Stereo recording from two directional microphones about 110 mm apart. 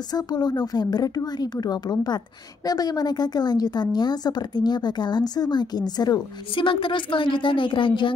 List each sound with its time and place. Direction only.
0.1 s a woman's voice: 40° left (ahead or behind)